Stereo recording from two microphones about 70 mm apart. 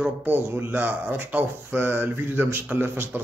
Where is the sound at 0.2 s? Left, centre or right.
Right.